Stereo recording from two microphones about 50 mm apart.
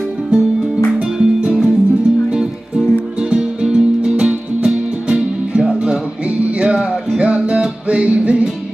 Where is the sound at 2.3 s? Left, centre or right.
Centre.